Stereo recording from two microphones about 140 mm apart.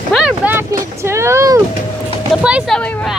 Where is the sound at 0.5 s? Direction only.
20° right (ahead or behind).